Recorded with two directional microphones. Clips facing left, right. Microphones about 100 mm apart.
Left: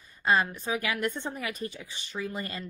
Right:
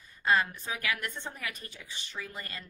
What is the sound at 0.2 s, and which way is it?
Speech, 20° left (ahead or behind).